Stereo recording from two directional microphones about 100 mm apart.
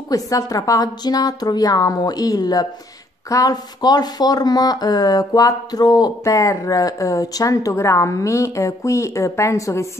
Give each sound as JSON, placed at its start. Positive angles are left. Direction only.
{"t": 0.1, "sound": "speech", "side_deg": 35}